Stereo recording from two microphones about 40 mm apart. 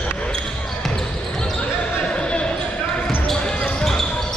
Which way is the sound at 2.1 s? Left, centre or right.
Left.